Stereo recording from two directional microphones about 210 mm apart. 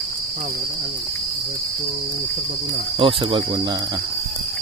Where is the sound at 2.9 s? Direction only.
25° right (ahead or behind).